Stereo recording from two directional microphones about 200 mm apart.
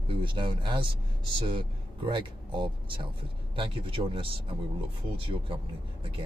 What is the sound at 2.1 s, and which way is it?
Speech, 25° right (ahead or behind).